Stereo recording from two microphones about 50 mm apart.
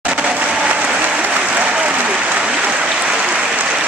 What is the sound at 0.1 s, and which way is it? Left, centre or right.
Applause, right.